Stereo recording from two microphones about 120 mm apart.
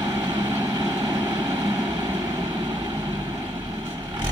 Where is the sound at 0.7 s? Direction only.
35° right (ahead or behind).